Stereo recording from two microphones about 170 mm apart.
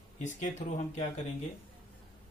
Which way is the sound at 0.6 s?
50° left (ahead or behind).